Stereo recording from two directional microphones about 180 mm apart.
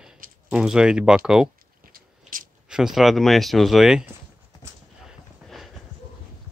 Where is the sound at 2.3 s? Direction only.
50° right (ahead or behind).